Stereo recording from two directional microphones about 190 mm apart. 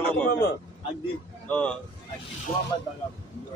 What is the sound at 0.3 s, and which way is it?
Speech, 55° left (ahead or behind).